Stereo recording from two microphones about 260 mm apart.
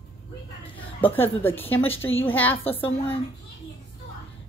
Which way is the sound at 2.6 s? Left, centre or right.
Left.